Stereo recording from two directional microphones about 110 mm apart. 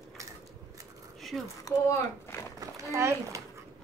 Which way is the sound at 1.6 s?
30° left (ahead or behind).